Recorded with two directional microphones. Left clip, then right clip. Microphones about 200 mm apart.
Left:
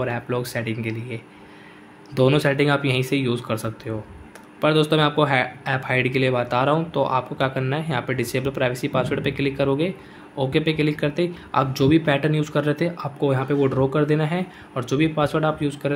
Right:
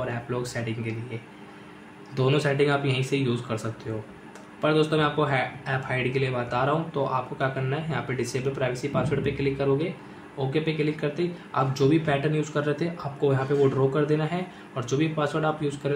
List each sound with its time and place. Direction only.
0.0 s speech: 40° left (ahead or behind)
2.1 s speech: 35° left (ahead or behind)